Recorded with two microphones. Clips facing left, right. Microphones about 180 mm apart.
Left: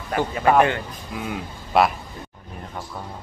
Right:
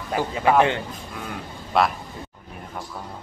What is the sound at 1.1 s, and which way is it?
Speech, 5° left (ahead or behind).